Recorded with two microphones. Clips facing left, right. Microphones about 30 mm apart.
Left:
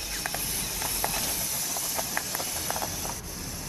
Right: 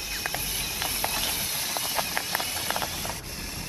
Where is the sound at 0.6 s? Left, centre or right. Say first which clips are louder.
Right 2 dB; right.